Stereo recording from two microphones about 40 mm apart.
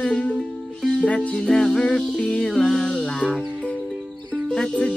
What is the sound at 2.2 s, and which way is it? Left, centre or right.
Music, left.